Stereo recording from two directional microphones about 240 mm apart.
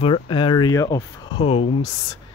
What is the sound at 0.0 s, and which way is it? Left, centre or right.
Speech, left.